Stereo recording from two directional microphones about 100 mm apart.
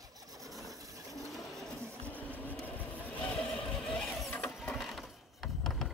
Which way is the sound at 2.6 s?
15° left (ahead or behind).